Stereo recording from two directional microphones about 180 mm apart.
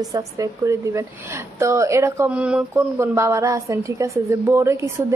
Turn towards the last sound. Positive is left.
turn(degrees=-15)  # may be behind; listen again after turning